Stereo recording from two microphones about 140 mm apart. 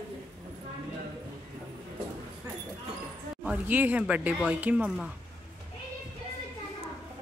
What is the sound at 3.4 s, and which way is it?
Speech, 10° right (ahead or behind).